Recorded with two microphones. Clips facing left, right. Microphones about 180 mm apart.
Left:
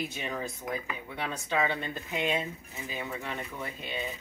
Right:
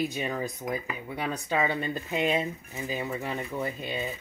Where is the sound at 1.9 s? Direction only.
35° right (ahead or behind).